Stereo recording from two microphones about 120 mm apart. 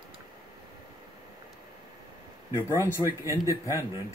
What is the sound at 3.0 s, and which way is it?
Speech, 25° right (ahead or behind).